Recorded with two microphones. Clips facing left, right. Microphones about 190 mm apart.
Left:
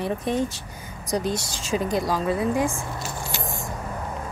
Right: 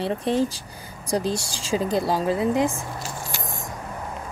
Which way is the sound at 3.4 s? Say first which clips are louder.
Left 2 dB; centre (ahead or behind).